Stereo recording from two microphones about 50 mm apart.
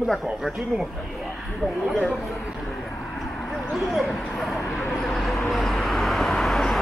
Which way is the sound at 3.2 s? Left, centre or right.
Centre.